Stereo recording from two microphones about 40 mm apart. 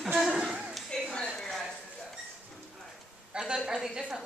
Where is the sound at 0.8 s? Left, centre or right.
Left.